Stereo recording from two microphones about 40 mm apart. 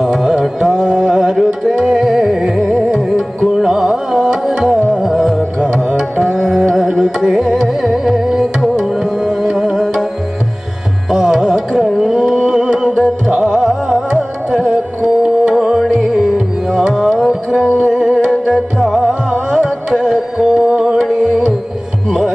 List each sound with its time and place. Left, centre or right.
0.0 s carnatic music: centre
1.3 s tabla: centre
2.5 s music: centre
11.1 s music: centre